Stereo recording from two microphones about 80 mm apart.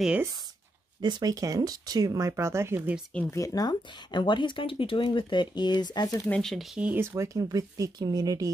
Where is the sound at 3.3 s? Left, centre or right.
Left.